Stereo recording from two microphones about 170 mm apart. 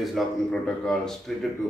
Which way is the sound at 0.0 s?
Centre (ahead or behind).